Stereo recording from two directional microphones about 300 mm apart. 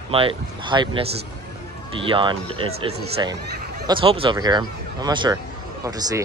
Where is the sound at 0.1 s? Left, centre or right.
Centre.